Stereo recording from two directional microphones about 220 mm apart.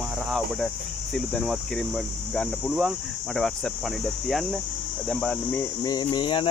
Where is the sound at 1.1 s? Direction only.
Centre (ahead or behind).